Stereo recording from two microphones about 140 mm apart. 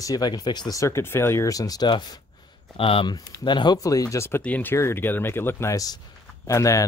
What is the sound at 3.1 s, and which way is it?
Speech, 30° left (ahead or behind).